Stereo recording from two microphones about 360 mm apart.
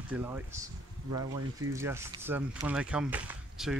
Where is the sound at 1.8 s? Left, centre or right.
Centre.